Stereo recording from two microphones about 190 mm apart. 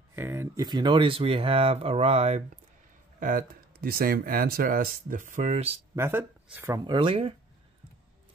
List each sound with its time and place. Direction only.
0.1 s speech: 10° right (ahead or behind); by 2.4 s 35° right (ahead or behind)
3.2 s speech: 45° right (ahead or behind)
5.9 s speech: 10° right (ahead or behind)
6.9 s speech: 25° right (ahead or behind)